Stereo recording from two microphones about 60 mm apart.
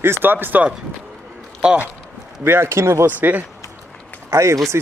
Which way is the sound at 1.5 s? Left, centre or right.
Centre.